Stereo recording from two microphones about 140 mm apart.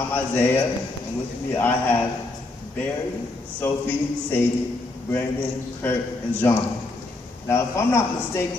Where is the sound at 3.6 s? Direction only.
15° left (ahead or behind).